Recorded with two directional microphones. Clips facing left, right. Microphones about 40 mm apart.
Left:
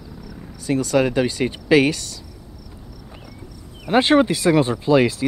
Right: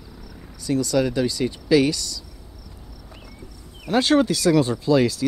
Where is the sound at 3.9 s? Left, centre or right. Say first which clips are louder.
Left 3 dB; left.